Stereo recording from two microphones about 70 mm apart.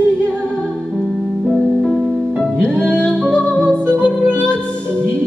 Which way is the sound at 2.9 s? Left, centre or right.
Centre.